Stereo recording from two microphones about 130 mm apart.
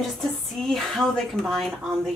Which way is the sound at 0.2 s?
Centre (ahead or behind).